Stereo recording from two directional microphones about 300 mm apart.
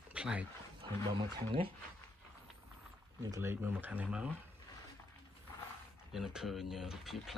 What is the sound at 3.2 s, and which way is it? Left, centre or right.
Speech, centre.